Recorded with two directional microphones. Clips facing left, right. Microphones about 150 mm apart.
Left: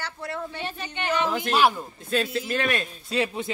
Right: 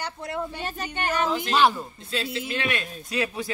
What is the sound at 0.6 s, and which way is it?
Speech, 45° right (ahead or behind).